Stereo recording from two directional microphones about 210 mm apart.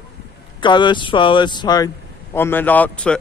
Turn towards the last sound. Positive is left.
turn(degrees=5)  # may be behind; listen again after turning